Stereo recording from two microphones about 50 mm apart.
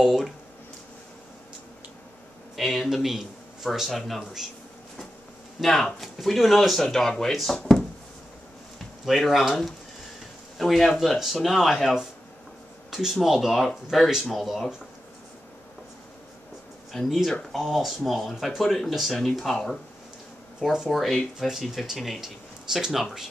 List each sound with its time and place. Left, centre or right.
0.0 s speech: centre
2.5 s speech: centre
5.6 s speech: centre
9.0 s speech: centre
10.6 s speech: centre
12.9 s speech: centre
16.9 s speech: centre
20.6 s speech: centre
20.9 s speech: centre